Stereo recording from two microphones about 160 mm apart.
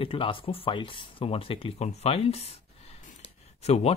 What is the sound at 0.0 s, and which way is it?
Speech, 35° left (ahead or behind).